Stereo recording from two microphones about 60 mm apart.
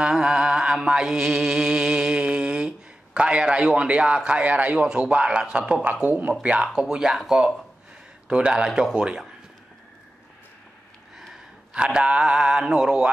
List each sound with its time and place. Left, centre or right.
0.0 s mantra: centre
3.2 s a man's voice: centre
4.8 s mantra: centre
6.0 s a man's voice: right
6.4 s mantra: centre
8.3 s mantra: centre
8.6 s mantra: centre
11.1 s gasp: centre
11.7 s mantra: centre